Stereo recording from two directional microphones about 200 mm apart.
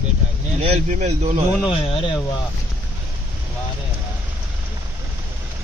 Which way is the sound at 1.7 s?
25° left (ahead or behind).